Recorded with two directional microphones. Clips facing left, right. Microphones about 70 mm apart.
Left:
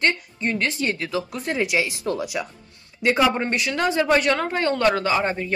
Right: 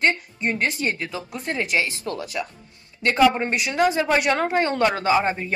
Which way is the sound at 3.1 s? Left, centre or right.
Centre.